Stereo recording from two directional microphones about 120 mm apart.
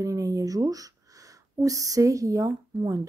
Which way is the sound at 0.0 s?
30° right (ahead or behind).